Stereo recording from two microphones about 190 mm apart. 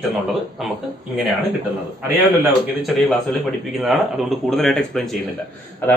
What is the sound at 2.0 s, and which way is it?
Speech, 10° right (ahead or behind).